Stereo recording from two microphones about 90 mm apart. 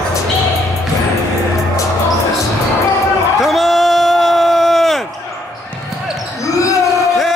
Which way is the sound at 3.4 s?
Centre (ahead or behind).